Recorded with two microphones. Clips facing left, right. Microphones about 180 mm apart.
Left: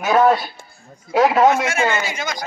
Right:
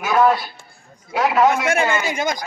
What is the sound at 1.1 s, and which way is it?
Speech, 45° left (ahead or behind).